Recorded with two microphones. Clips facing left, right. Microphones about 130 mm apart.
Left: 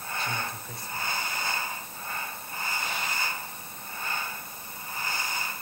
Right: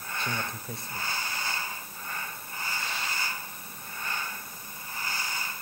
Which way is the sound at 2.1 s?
25° left (ahead or behind).